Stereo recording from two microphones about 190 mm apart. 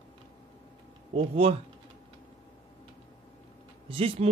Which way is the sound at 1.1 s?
30° right (ahead or behind).